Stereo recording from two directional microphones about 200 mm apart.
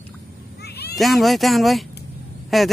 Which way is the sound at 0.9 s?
Centre (ahead or behind).